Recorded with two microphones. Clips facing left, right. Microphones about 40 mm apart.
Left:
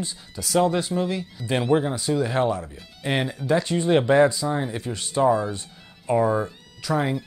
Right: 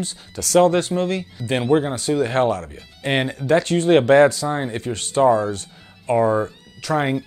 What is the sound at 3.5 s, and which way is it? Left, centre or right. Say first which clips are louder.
Speech: right 5 dB; right.